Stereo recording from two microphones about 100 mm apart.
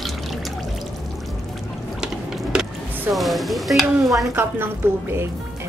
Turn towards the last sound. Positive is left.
turn(degrees=-25)  # may be behind; listen again after turning